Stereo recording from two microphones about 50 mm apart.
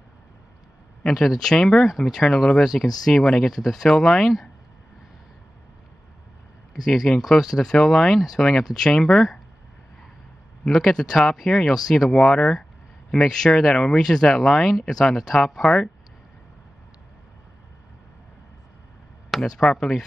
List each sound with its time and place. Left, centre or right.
1.0 s speech: centre
6.7 s speech: centre
10.6 s speech: centre
19.3 s speech: centre